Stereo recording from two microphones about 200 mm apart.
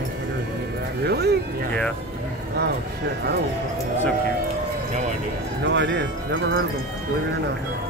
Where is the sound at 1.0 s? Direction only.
55° right (ahead or behind).